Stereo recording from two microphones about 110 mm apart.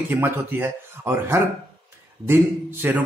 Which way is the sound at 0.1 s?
20° right (ahead or behind).